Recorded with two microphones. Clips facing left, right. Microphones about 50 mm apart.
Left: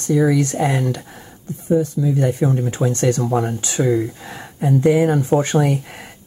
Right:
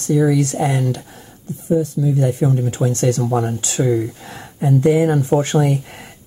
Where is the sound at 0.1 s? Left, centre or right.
Centre.